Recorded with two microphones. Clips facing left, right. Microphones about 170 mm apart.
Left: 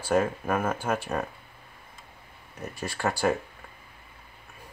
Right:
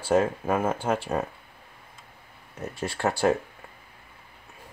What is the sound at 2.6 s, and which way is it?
Speech, 25° right (ahead or behind).